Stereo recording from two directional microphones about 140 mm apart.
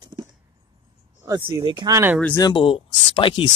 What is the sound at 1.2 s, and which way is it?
Speech, 30° right (ahead or behind).